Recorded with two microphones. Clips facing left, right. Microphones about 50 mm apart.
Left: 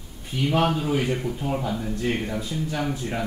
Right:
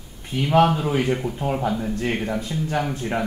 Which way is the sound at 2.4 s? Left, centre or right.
Right.